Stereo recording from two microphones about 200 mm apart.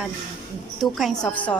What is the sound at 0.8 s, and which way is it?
Speech, centre (ahead or behind).